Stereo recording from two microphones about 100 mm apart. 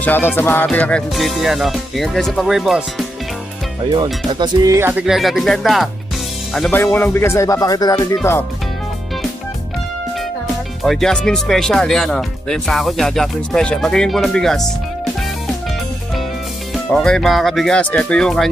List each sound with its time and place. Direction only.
0.0 s music: 20° left (ahead or behind)
0.4 s speech: 20° left (ahead or behind)
1.1 s speech: centre (ahead or behind)
4.0 s speech: 45° right (ahead or behind)
4.7 s speech: 20° right (ahead or behind)
5.0 s speech: centre (ahead or behind)
6.7 s speech: 20° left (ahead or behind); by 7.9 s 40° left (ahead or behind)
7.9 s speech: 25° left (ahead or behind)
10.8 s speech: centre (ahead or behind)
16.9 s speech: 5° left (ahead or behind)